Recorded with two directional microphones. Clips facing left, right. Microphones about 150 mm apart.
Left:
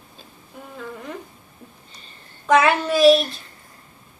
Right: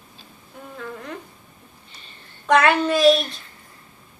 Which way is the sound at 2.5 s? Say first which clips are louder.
Even; 5° left (ahead or behind).